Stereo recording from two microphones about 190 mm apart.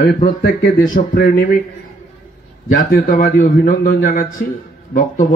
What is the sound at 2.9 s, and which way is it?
Speech, 45° left (ahead or behind).